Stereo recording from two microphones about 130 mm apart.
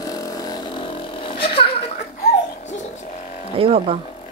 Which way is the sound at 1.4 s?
45° left (ahead or behind).